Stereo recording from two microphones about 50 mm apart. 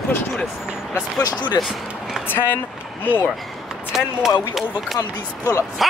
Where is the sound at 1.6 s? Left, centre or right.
Centre.